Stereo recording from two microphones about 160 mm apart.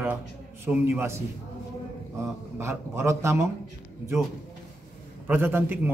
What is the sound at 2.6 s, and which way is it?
Speech, 15° right (ahead or behind).